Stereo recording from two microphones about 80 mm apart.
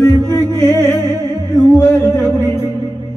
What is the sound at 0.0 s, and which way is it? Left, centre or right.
Music, left.